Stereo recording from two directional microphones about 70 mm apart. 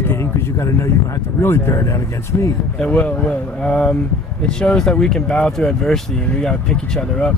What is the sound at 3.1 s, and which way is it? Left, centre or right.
Speech, centre.